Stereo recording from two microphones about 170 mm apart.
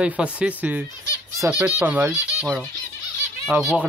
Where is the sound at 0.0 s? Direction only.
5° right (ahead or behind).